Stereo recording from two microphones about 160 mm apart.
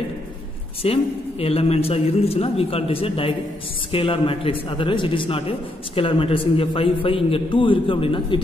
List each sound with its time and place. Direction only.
0.8 s a man's voice: 40° left (ahead or behind)